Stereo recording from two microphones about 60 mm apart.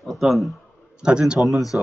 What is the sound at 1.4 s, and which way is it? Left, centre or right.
Speech, centre.